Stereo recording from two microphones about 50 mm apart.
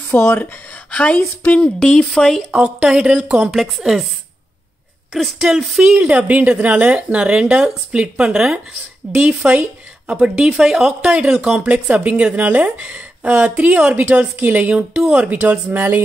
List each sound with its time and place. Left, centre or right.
0.1 s speech: left
0.9 s a woman's voice: left
1.8 s speech: centre
2.5 s speech: right
5.1 s a woman's voice: centre
5.9 s a woman's voice: right; by 11.0 s centre
11.0 s a woman's voice: right
15.2 s speech: right